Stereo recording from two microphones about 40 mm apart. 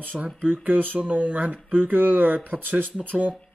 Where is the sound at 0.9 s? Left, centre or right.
Right.